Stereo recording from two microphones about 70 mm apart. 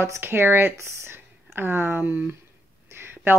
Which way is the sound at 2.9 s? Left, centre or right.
Right.